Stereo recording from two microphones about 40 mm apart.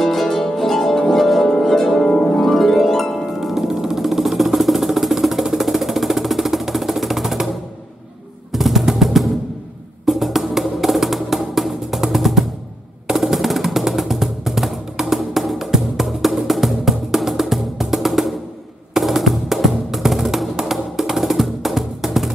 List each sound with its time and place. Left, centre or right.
0.0 s harp: centre
3.3 s music: centre
8.5 s machine gun: centre
10.0 s music: centre